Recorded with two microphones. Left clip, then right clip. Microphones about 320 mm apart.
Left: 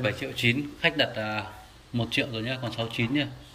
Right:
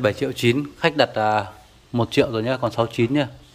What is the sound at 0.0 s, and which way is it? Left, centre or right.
Speech, centre.